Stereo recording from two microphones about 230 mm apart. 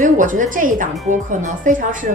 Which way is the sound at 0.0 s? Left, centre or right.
Right.